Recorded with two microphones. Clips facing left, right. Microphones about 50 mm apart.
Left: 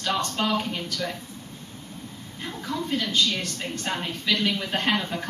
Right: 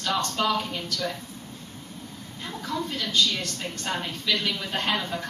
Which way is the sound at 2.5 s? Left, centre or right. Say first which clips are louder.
Even; centre.